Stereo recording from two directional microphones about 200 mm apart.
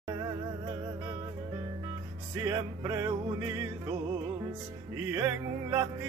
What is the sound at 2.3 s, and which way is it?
Music, 15° right (ahead or behind).